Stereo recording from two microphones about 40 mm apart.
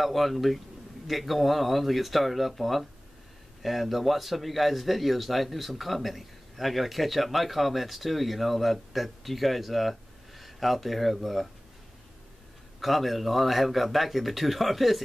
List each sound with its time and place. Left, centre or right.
0.0 s speech: centre
12.8 s speech: centre